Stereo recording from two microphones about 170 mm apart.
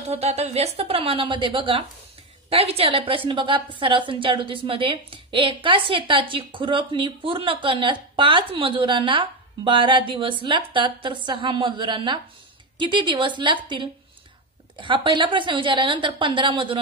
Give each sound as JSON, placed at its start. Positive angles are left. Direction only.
{"t": 0.1, "sound": "a woman's voice", "side_deg": -40}